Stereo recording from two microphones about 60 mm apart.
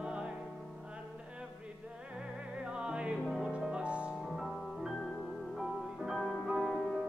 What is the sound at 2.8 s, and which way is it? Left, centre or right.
Music, centre.